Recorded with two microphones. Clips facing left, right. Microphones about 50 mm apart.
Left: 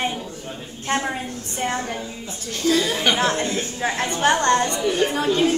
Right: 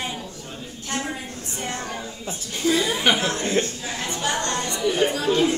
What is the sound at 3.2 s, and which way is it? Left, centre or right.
A woman's voice, left.